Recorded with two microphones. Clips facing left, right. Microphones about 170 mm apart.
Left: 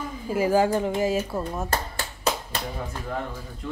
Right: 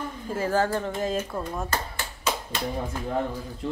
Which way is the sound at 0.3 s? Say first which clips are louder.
Left 4 dB; 10° left (ahead or behind).